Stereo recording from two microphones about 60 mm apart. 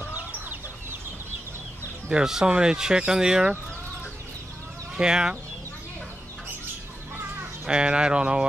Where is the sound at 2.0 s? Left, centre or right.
Centre.